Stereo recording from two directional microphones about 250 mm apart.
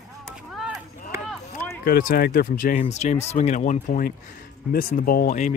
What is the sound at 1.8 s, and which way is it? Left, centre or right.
Speech, left.